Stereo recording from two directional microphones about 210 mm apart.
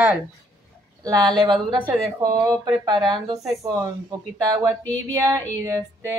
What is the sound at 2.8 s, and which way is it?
A woman's voice, 20° right (ahead or behind).